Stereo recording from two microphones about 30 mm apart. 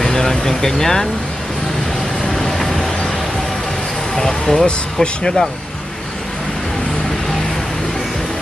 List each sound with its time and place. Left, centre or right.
0.0 s speech: centre
2.2 s vehicle: centre
4.1 s a sound: centre
5.0 s speech: left